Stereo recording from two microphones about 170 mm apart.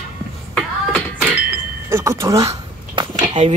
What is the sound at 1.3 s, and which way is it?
Chink, 15° right (ahead or behind).